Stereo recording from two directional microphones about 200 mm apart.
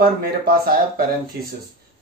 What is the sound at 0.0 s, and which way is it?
Speech, 45° right (ahead or behind).